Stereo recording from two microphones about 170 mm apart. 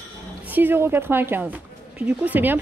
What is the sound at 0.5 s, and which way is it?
A woman's voice, 10° right (ahead or behind).